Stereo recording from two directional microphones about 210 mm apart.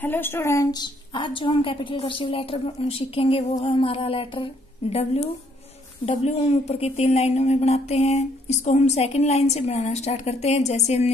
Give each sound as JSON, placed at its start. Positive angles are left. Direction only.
{"t": 0.0, "sound": "a woman's voice", "side_deg": 10}